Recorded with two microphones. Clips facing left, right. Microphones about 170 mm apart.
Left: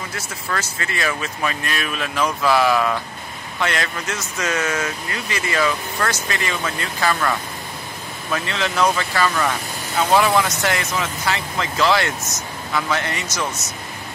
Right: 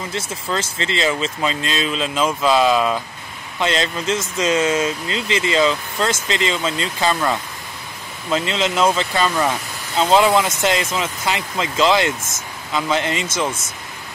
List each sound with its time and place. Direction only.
0.1 s speech: 25° right (ahead or behind)